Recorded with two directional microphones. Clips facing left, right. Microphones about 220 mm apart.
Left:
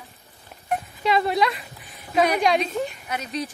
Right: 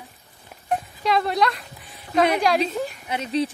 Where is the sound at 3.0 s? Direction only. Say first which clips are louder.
Right 5 dB; 25° right (ahead or behind).